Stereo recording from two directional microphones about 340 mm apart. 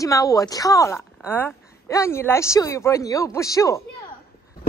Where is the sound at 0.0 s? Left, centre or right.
Centre.